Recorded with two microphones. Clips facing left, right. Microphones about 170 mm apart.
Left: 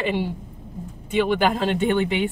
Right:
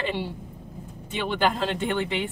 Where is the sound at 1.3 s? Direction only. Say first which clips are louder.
Left 4 dB; 15° left (ahead or behind).